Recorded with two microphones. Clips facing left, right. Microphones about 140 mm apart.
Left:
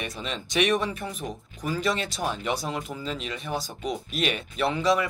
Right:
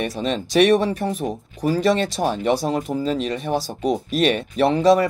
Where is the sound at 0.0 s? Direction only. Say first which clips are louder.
Right 10 dB; 40° right (ahead or behind).